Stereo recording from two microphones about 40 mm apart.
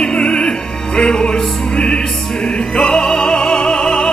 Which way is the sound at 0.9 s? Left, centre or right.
Centre.